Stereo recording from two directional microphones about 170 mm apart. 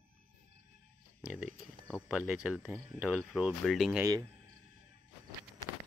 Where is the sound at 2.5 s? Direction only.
5° left (ahead or behind).